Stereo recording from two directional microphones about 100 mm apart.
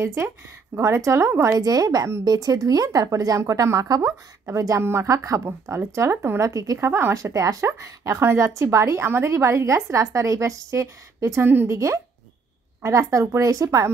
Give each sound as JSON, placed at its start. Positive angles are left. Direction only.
{"t": 0.0, "sound": "a woman's voice", "side_deg": -25}
{"t": 6.9, "sound": "a woman's voice", "side_deg": -20}
{"t": 7.2, "sound": "speech", "side_deg": -35}
{"t": 11.4, "sound": "a woman's voice", "side_deg": -20}